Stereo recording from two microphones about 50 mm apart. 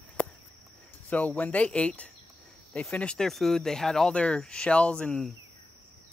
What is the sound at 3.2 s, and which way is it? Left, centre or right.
Speech, centre.